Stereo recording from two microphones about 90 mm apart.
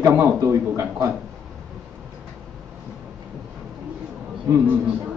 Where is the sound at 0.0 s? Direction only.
30° right (ahead or behind).